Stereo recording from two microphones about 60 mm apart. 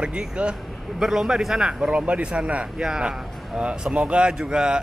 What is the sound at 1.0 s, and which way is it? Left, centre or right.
Speech, centre.